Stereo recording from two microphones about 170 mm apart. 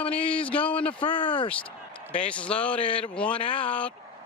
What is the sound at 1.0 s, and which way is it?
Speech, 30° left (ahead or behind).